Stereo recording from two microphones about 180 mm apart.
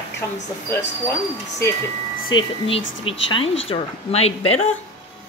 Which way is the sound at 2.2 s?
30° left (ahead or behind).